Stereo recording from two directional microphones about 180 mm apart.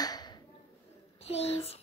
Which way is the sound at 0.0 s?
20° left (ahead or behind).